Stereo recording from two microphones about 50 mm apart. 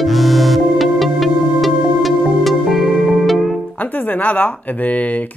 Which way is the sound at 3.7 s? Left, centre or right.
Left.